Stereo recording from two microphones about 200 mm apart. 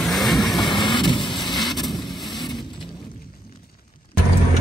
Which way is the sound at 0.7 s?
25° left (ahead or behind).